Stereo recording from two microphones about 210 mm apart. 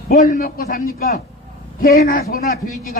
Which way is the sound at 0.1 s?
40° left (ahead or behind).